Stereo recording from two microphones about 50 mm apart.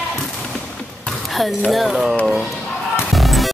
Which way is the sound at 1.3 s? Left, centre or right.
Centre.